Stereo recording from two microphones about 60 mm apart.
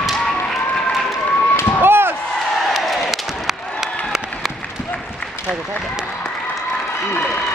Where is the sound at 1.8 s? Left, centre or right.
Right.